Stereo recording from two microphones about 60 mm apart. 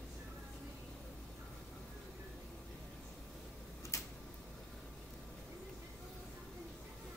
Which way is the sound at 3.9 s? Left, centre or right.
Left.